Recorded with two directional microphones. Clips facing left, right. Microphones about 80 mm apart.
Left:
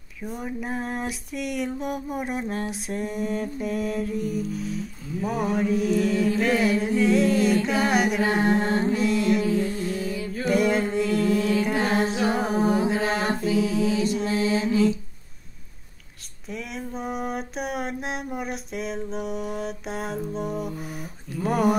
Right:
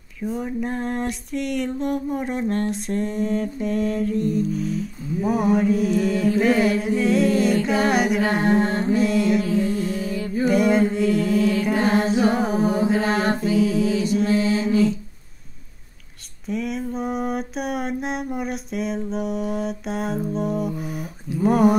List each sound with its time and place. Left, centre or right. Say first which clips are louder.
0.2 s mantra: right 6 dB; centre
7.6 s music: right 2 dB; centre
9.9 s music: right 2 dB; right
10.4 s mantra: right 4 dB; centre
16.4 s mantra: right 8 dB; centre